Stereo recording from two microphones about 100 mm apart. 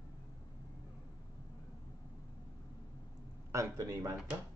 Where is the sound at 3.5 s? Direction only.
30° right (ahead or behind).